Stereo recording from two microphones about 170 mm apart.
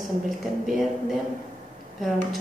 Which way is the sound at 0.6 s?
Centre (ahead or behind).